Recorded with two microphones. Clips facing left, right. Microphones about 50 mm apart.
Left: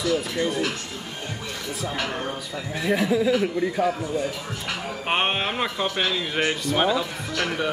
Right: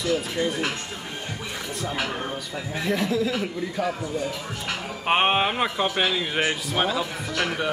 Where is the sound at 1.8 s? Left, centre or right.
Centre.